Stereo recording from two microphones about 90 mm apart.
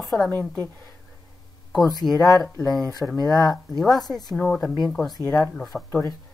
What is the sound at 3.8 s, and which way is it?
Speech, centre (ahead or behind).